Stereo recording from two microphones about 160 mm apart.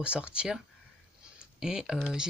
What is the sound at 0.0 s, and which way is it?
Speech, 5° right (ahead or behind).